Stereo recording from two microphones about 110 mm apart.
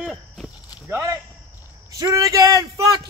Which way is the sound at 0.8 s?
25° right (ahead or behind).